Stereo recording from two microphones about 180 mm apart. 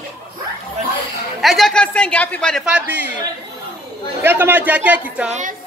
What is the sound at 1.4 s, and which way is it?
A woman's voice, centre (ahead or behind).